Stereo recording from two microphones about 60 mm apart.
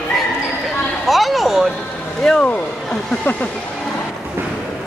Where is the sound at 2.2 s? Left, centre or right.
Centre.